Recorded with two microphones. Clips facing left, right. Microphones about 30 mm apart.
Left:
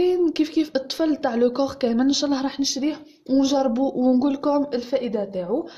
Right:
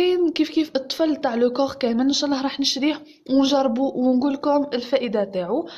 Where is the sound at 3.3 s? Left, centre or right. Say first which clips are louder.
Right 1 dB; right.